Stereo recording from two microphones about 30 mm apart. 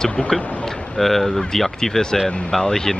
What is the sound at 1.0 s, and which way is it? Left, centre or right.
Speech, centre.